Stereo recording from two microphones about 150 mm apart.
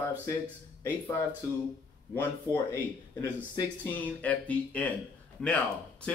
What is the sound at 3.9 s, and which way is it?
Speech, 10° left (ahead or behind).